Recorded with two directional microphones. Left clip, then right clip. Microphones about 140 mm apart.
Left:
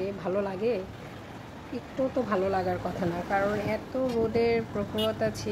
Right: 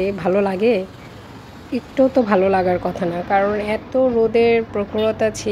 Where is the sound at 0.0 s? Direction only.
30° right (ahead or behind).